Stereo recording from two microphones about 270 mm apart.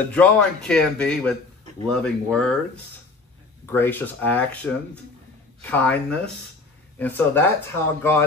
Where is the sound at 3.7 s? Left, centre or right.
Centre.